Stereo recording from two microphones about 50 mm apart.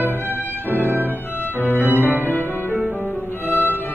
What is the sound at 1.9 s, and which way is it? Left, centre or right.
Music, right.